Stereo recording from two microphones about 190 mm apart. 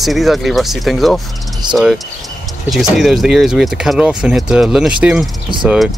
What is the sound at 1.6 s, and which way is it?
Speech, 20° right (ahead or behind).